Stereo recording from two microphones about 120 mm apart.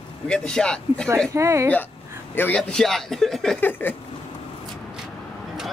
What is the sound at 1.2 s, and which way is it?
Speech, 25° right (ahead or behind).